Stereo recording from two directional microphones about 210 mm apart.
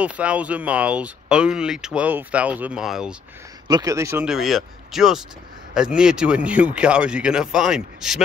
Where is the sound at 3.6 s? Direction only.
15° right (ahead or behind).